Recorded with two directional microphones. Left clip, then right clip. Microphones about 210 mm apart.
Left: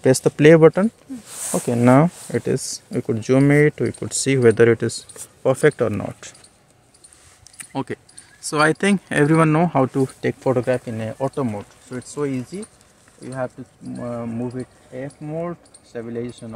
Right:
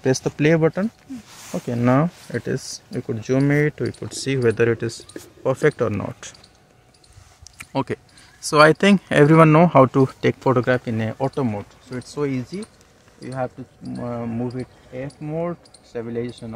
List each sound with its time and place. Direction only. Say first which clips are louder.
0.0 s speech: left 6 dB; 45° left (ahead or behind)
1.5 s speech: left 4 dB; 30° left (ahead or behind)
5.8 s speech: left 1 dB; 15° left (ahead or behind)
7.4 s speech: right 3 dB; 15° right (ahead or behind)
11.1 s speech: left 2 dB; 5° right (ahead or behind)